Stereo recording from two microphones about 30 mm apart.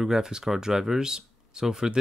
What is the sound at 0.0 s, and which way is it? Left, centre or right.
Speech, right.